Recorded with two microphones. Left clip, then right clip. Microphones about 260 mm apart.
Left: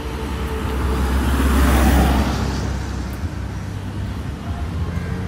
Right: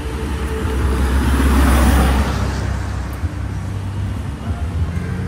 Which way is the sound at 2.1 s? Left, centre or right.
Right.